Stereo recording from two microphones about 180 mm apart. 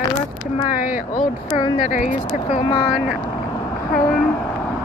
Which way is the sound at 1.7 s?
45° left (ahead or behind).